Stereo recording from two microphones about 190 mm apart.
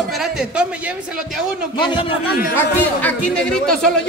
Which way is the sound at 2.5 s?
10° left (ahead or behind).